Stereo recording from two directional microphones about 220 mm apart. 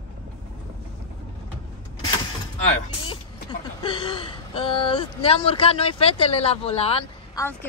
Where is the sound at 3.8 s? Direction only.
25° left (ahead or behind).